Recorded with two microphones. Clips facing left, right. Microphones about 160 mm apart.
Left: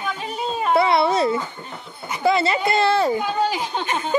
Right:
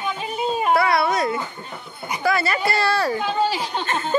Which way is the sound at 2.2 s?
25° left (ahead or behind).